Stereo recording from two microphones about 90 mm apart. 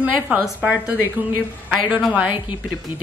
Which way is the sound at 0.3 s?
15° right (ahead or behind).